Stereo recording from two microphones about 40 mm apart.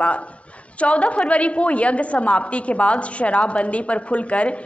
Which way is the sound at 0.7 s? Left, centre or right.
Left.